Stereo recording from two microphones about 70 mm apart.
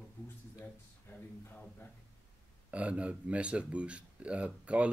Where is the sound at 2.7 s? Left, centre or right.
Centre.